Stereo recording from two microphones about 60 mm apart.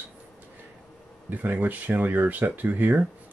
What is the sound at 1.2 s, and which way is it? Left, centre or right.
Speech, right.